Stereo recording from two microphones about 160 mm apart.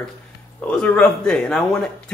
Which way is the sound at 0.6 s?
5° left (ahead or behind).